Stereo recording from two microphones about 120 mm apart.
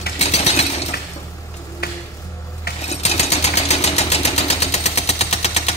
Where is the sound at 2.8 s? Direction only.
65° left (ahead or behind).